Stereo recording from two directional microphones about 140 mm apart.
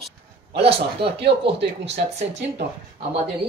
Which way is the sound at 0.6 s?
40° right (ahead or behind).